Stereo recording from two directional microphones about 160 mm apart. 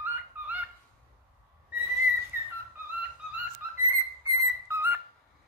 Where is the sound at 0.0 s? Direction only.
10° right (ahead or behind).